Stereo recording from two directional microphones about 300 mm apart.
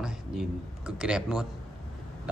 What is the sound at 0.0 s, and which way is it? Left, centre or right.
A man's voice, centre.